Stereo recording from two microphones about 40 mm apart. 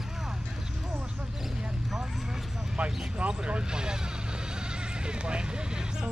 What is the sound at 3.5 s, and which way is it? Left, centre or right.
Vehicle, right.